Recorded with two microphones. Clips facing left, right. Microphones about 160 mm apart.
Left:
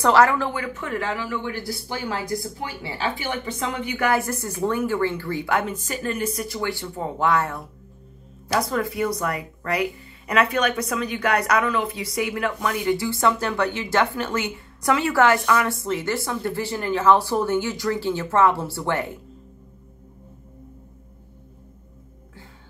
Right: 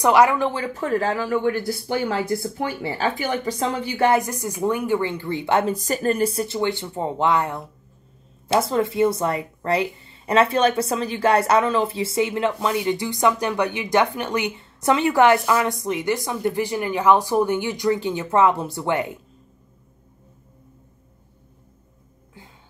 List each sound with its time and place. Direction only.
0.0 s speech: 15° right (ahead or behind)
0.5 s a woman's voice: 30° right (ahead or behind)
2.6 s a woman's voice: 45° right (ahead or behind); by 4.2 s 30° right (ahead or behind)
4.2 s speech: 15° right (ahead or behind)